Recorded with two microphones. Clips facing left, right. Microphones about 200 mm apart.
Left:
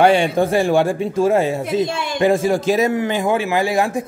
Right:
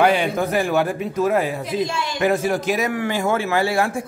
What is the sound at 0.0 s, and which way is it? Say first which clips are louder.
A man's voice: left 4 dB; 30° left (ahead or behind).